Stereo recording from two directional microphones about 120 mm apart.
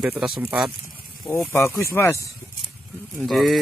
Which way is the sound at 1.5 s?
20° left (ahead or behind).